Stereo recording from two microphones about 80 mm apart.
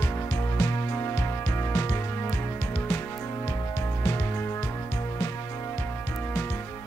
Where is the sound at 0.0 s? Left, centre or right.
Left.